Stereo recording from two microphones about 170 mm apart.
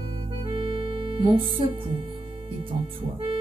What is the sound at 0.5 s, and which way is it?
Music, 30° right (ahead or behind).